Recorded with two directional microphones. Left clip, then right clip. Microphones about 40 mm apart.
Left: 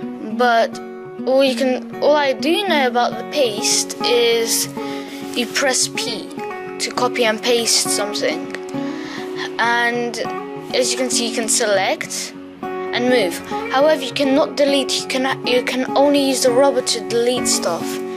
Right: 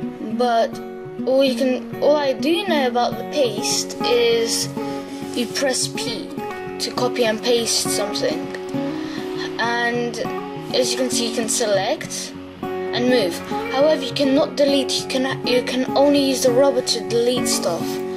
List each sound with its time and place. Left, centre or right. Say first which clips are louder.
0.4 s speech: left 3 dB; left
6.8 s speech: left 2 dB; left
9.4 s music: left 4 dB; left
10.7 s speech: left 1 dB; left
13.7 s speech: left 2 dB; left